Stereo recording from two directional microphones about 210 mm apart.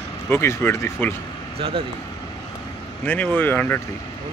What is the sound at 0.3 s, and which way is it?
Speech, 10° left (ahead or behind).